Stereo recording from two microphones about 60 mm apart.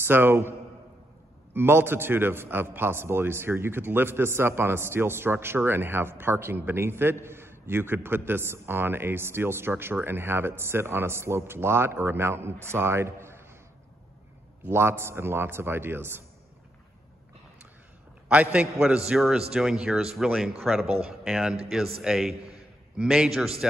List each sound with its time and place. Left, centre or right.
0.0 s a man's voice: right
14.7 s a man's voice: right
18.3 s a man's voice: right
18.9 s speech: centre